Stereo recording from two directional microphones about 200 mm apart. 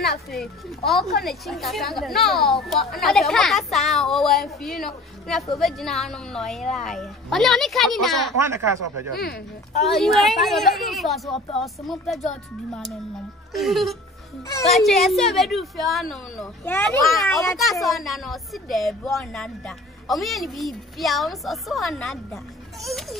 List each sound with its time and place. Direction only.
0.3 s speech: centre (ahead or behind)
8.5 s speech: 15° right (ahead or behind)
9.1 s speech: 50° left (ahead or behind)
9.8 s speech: centre (ahead or behind)